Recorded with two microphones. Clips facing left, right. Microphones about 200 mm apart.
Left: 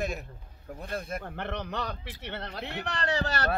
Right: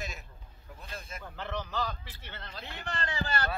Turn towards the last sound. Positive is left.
turn(degrees=75)  # may be behind; listen again after turning